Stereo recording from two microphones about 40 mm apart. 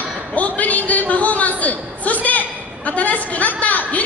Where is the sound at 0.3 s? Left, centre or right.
Left.